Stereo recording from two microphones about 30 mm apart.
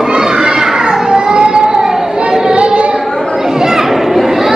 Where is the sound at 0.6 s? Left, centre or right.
Centre.